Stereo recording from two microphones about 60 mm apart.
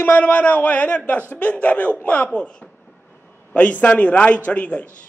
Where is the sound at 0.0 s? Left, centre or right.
Left.